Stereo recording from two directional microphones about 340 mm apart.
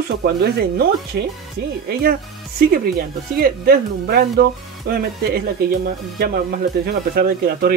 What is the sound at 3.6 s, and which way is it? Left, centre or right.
Speech, right.